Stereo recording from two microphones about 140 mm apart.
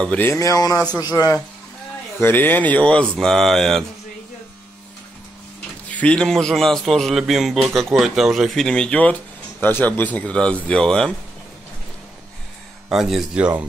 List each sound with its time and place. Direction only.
0.0 s a man's voice: 10° left (ahead or behind)
0.3 s a man's voice: 20° left (ahead or behind); by 3.8 s centre (ahead or behind)
5.9 s a man's voice: 10° left (ahead or behind)
12.9 s speech: 5° right (ahead or behind)